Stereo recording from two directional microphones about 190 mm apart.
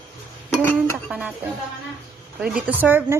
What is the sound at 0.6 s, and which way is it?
Speech, 10° left (ahead or behind).